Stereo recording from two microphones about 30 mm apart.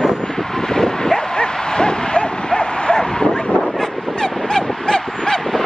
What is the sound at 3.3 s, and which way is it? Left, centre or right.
Vehicle, left.